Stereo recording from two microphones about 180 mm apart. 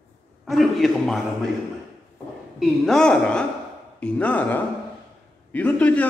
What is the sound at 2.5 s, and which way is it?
A man's voice, 5° left (ahead or behind).